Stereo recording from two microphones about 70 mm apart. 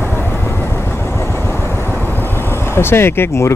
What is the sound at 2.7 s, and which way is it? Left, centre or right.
Speech, left.